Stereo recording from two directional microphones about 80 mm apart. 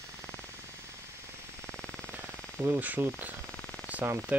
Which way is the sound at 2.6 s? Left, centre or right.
Right.